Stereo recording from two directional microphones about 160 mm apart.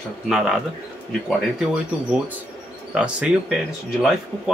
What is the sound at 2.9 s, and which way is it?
Speech, 5° right (ahead or behind).